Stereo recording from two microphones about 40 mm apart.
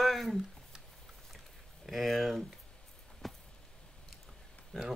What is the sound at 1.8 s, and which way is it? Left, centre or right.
Speech, centre.